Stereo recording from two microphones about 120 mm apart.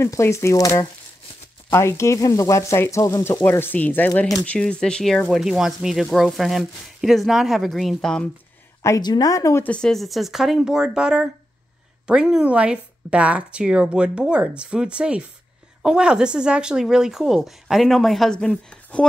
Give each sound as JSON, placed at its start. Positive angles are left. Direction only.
{"t": 0.0, "sound": "speech", "side_deg": 25}
{"t": 8.8, "sound": "speech", "side_deg": 30}
{"t": 9.7, "sound": "speech", "side_deg": 5}